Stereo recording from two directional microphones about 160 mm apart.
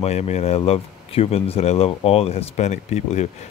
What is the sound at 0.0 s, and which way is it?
Speech, 40° left (ahead or behind).